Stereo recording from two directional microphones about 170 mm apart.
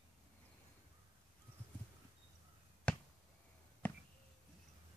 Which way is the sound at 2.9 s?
10° left (ahead or behind).